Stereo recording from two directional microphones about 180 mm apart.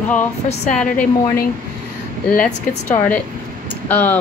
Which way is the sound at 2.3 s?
10° left (ahead or behind).